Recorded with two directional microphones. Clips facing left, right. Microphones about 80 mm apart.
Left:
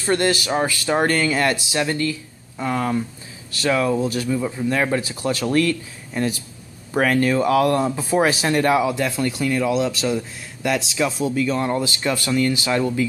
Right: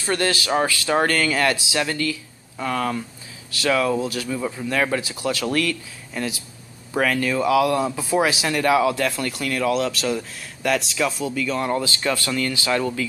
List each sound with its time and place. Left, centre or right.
0.0 s speech: left
4.3 s speech: centre
5.0 s speech: left
8.7 s speech: centre
11.1 s speech: left; by 13.0 s centre